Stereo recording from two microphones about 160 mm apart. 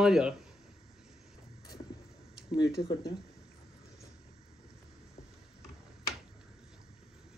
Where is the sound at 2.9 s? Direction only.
25° left (ahead or behind).